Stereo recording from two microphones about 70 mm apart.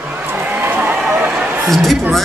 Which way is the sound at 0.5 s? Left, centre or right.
Right.